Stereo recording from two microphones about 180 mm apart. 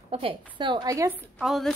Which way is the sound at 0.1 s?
30° right (ahead or behind).